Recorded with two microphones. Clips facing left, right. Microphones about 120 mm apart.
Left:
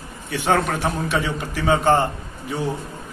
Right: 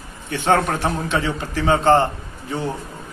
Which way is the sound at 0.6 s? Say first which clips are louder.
Right 1 dB; 15° left (ahead or behind).